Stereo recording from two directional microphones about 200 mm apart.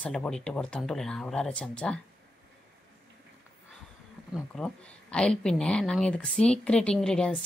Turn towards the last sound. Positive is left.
turn(degrees=5)  # may be behind; listen again after turning